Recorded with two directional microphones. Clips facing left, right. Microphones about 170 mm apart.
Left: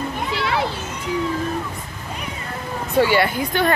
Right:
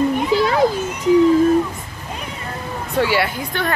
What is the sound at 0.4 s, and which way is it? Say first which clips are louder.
Children playing: right 5 dB; 40° right (ahead or behind).